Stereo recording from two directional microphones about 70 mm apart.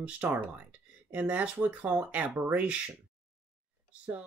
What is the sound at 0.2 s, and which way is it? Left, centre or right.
Speech, right.